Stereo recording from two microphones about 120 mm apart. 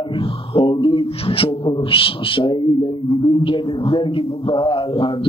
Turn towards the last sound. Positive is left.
turn(degrees=45)  # may be behind; listen again after turning